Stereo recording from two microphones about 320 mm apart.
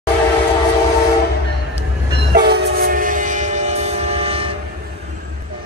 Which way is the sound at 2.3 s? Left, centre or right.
Right.